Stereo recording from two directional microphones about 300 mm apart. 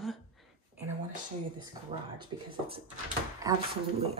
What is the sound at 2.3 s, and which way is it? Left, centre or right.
Speech, centre.